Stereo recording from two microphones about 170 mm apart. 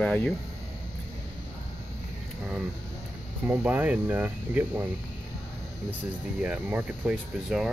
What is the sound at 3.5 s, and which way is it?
Speech, 10° right (ahead or behind).